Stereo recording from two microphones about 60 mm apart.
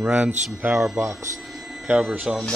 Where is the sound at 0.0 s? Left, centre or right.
Right.